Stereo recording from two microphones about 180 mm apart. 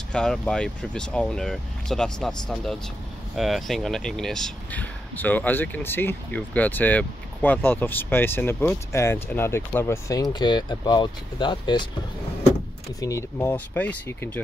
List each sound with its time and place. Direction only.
0.1 s speech: 5° left (ahead or behind); by 11.9 s 25° left (ahead or behind)
13.0 s speech: 15° left (ahead or behind)